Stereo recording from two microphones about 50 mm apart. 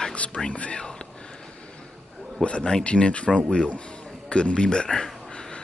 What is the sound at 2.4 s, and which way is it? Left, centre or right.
A man's voice, left.